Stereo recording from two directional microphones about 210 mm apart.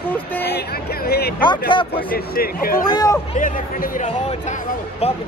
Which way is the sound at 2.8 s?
20° left (ahead or behind).